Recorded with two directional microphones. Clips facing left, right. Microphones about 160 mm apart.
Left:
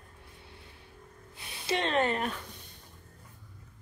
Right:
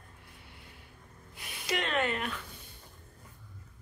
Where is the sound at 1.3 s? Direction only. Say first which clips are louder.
Left 3 dB; 30° left (ahead or behind).